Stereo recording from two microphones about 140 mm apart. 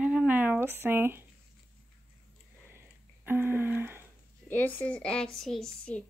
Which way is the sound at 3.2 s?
15° right (ahead or behind).